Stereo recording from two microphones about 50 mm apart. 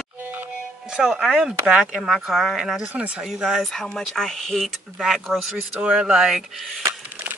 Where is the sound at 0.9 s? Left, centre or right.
Centre.